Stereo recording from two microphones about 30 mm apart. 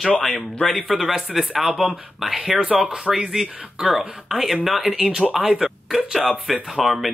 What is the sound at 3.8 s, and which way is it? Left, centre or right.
Speech, right.